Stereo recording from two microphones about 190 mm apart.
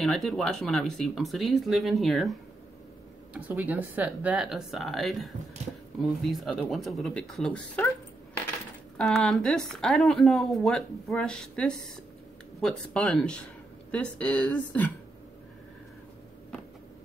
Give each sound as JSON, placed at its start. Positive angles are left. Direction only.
{"t": 0.0, "sound": "speech", "side_deg": 0}
{"t": 3.3, "sound": "speech", "side_deg": -10}
{"t": 8.9, "sound": "speech", "side_deg": 5}